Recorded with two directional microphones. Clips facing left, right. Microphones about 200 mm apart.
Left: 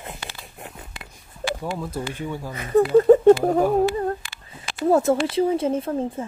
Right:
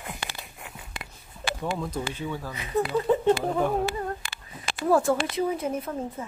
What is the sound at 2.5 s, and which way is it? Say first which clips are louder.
Speech: left 10 dB; 50° left (ahead or behind).